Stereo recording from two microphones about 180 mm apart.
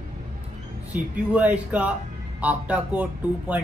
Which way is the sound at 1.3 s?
10° right (ahead or behind).